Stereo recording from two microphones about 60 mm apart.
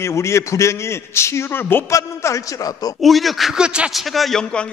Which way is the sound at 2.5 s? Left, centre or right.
Left.